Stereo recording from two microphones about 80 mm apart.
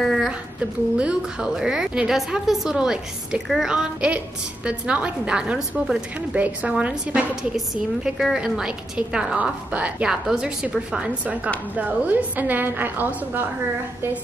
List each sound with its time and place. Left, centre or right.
0.0 s a sound: centre
0.9 s a woman's voice: centre
7.5 s a woman's voice: centre; by 13.5 s right